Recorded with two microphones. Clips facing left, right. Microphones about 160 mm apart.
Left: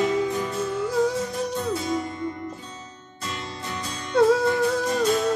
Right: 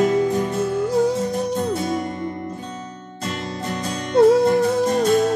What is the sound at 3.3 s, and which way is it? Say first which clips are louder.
Music: right 6 dB; 50° right (ahead or behind).